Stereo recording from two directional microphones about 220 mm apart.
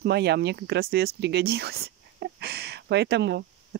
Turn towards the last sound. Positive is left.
turn(degrees=-50)  # may be behind; listen again after turning